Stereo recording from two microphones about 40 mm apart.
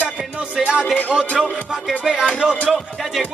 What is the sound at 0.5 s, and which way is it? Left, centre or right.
Music, right.